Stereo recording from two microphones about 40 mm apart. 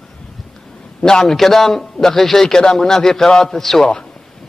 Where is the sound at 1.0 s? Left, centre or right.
Centre.